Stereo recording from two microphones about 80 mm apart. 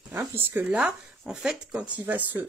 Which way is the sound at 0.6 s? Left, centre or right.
Centre.